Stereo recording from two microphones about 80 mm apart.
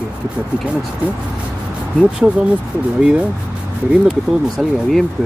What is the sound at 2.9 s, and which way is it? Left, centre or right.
Speech, centre.